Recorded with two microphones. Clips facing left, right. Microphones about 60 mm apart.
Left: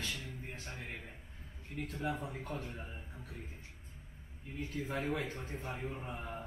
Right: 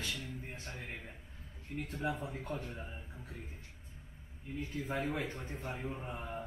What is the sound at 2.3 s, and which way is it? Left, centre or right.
Speech, centre.